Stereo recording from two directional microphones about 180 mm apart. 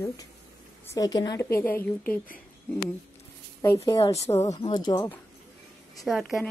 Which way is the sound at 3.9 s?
20° left (ahead or behind).